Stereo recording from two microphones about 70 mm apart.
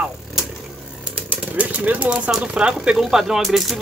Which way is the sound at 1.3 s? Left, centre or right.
Right.